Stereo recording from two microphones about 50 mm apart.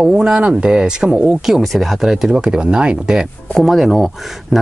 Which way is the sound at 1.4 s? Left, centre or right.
Centre.